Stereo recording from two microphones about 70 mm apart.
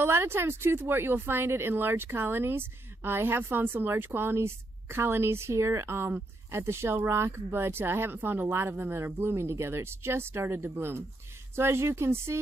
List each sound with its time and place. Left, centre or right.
0.0 s speech: right